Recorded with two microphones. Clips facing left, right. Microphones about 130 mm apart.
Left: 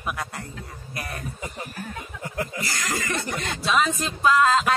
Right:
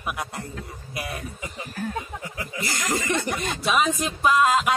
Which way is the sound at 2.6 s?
20° right (ahead or behind).